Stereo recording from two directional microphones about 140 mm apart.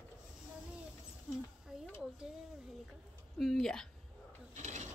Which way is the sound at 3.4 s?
Centre (ahead or behind).